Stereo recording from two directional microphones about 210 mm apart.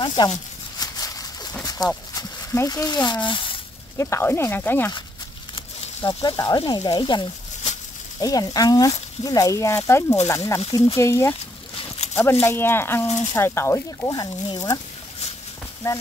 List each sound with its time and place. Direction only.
0.0 s a sound: 20° left (ahead or behind)
1.8 s speech: 20° left (ahead or behind)
5.9 s speech: 20° left (ahead or behind)
11.8 s a sound: 30° left (ahead or behind)
12.2 s speech: 10° left (ahead or behind)
15.8 s speech: 10° left (ahead or behind)